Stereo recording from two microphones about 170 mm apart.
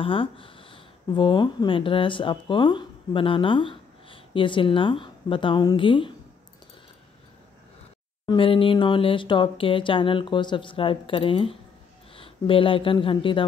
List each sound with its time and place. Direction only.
0.0 s speech: 30° left (ahead or behind)
8.3 s speech: 30° left (ahead or behind)